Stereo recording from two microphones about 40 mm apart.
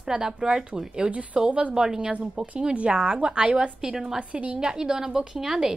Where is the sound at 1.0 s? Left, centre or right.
Right.